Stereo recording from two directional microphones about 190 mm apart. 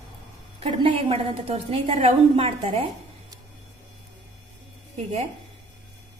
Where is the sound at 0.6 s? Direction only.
30° right (ahead or behind).